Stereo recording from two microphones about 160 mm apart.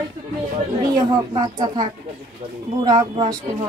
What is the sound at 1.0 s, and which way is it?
Speech, 25° right (ahead or behind).